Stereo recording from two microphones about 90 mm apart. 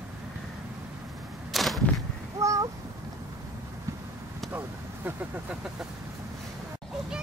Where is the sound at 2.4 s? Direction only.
35° right (ahead or behind).